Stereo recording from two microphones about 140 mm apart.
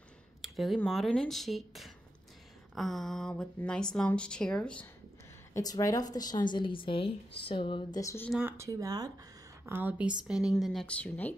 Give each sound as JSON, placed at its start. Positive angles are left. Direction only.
{"t": 0.4, "sound": "speech", "side_deg": 0}
{"t": 5.5, "sound": "a woman's voice", "side_deg": 25}
{"t": 8.0, "sound": "speech", "side_deg": 20}
{"t": 8.4, "sound": "speech", "side_deg": -15}
{"t": 9.7, "sound": "a woman's voice", "side_deg": -15}